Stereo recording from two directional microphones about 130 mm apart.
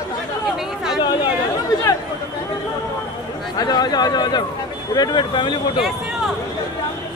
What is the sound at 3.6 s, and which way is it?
Speech, 30° left (ahead or behind).